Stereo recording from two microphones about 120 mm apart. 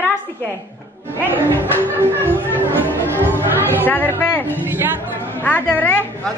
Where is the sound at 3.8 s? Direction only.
15° left (ahead or behind).